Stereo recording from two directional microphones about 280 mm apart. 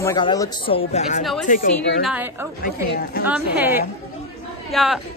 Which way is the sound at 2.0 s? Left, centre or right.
Centre.